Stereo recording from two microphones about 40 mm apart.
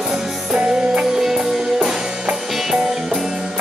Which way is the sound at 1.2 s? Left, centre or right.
Centre.